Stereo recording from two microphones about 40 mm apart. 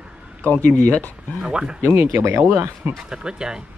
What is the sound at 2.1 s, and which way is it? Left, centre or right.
Speech, right.